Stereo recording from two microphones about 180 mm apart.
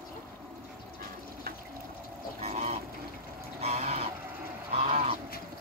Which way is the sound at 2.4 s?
35° right (ahead or behind).